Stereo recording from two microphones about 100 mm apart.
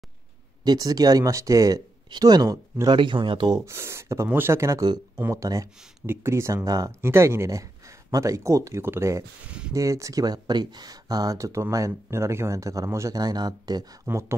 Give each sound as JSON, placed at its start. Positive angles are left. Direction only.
{"t": 0.7, "sound": "speech", "side_deg": -40}
{"t": 2.9, "sound": "speech", "side_deg": -55}
{"t": 3.5, "sound": "speech", "side_deg": -30}
{"t": 7.0, "sound": "speech", "side_deg": -25}
{"t": 13.2, "sound": "speech", "side_deg": -40}
{"t": 14.1, "sound": "speech", "side_deg": -20}